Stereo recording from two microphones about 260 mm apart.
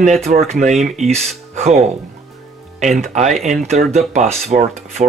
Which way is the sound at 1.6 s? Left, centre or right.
Right.